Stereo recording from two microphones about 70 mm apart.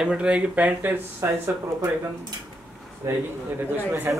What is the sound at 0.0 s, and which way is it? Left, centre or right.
Speech, centre.